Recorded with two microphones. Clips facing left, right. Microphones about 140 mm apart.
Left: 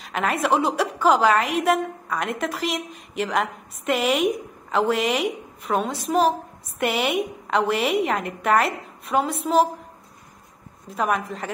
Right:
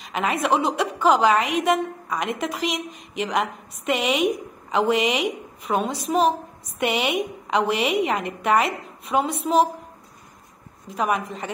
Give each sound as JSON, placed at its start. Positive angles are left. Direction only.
{"t": 0.0, "sound": "a woman's voice", "side_deg": 0}
{"t": 10.9, "sound": "a woman's voice", "side_deg": 0}